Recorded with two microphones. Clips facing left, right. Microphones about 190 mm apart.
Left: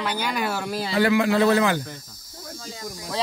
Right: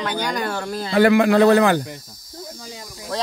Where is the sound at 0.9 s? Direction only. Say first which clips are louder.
Right 6 dB; 55° right (ahead or behind).